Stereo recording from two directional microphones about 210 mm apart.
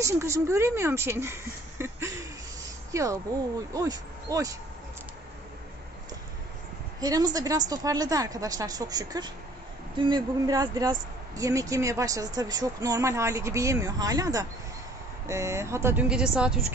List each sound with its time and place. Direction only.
0.0 s speech: 15° right (ahead or behind)
7.0 s speech: 20° right (ahead or behind)